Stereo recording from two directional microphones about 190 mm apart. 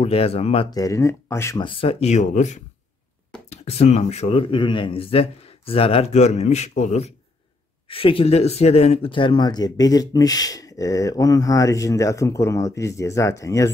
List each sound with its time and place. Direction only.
0.0 s speech: 30° left (ahead or behind)
0.7 s speech: 15° left (ahead or behind)
1.6 s speech: 25° left (ahead or behind)